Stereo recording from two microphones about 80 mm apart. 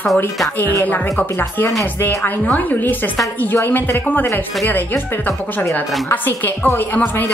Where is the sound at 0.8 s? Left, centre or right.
Left.